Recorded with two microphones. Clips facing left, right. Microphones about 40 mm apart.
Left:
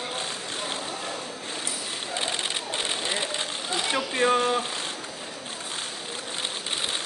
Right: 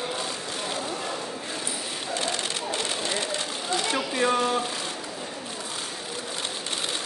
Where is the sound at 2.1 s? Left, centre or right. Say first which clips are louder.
Even; left.